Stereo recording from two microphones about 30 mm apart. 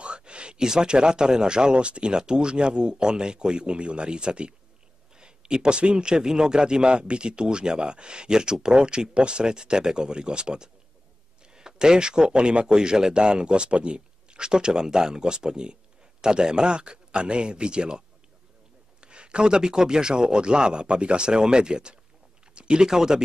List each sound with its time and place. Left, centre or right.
0.0 s a sound: right
0.6 s speech: right
6.1 s speech: right